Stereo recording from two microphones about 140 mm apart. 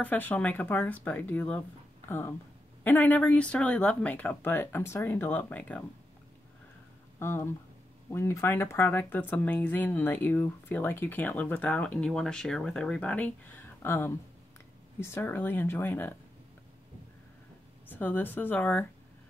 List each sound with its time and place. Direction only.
0.0 s speech: 10° left (ahead or behind)
7.2 s speech: 15° left (ahead or behind)
17.8 s speech: 15° left (ahead or behind)